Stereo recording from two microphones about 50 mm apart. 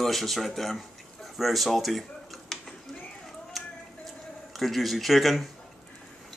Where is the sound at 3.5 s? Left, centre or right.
Centre.